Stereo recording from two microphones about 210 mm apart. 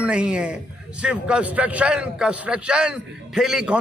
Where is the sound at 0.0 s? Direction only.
5° right (ahead or behind).